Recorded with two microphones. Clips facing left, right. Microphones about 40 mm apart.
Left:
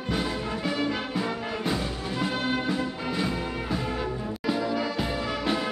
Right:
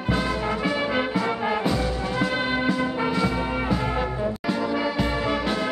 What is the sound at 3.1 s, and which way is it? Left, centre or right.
Music, centre.